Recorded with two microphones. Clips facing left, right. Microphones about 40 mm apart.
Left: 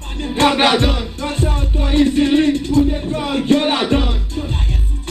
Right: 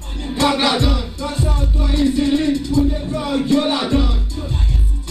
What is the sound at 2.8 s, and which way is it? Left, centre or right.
Music, left.